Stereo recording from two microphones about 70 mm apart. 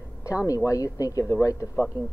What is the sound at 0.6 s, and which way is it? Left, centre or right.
Speech, left.